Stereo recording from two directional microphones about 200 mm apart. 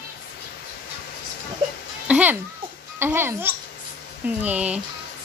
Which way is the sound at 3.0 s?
10° right (ahead or behind).